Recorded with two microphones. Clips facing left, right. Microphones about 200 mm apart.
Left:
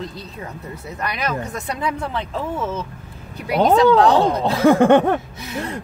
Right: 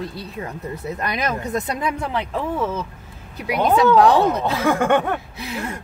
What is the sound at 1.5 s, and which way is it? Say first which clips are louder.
Speech: right 2 dB; 15° right (ahead or behind).